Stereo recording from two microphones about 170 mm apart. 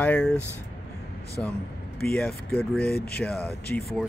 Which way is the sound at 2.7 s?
65° left (ahead or behind).